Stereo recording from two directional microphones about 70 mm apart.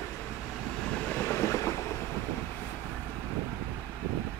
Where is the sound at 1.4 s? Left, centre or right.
Left.